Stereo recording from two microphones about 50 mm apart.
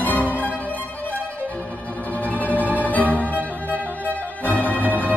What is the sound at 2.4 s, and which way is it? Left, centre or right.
Music, right.